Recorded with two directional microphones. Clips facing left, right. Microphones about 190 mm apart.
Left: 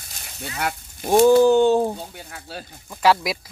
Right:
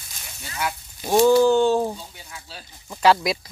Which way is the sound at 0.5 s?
55° left (ahead or behind).